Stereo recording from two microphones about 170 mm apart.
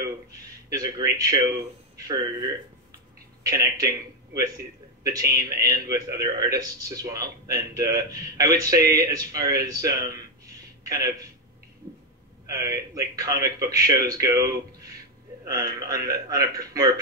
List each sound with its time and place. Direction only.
0.3 s a man's voice: 20° right (ahead or behind)
3.4 s a man's voice: 20° right (ahead or behind)
12.4 s a man's voice: 20° right (ahead or behind)